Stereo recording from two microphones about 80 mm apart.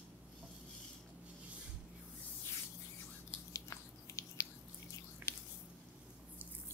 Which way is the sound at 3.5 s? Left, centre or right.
Left.